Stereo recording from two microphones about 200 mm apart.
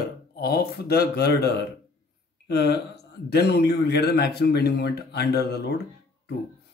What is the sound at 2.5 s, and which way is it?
Speech, 55° left (ahead or behind).